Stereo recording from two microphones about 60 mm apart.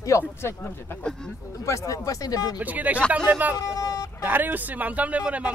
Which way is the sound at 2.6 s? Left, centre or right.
Right.